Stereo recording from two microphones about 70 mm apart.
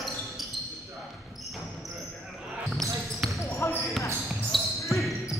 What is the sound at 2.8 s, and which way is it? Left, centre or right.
Basketball bounce, right.